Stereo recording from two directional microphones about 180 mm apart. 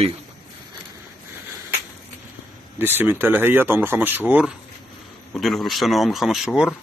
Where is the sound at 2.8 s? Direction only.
10° right (ahead or behind).